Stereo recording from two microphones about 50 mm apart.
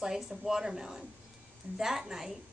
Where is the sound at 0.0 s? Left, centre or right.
Centre.